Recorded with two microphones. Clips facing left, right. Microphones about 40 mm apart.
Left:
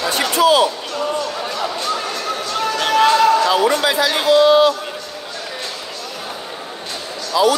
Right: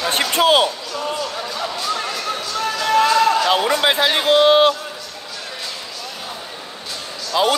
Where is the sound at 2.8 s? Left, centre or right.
Left.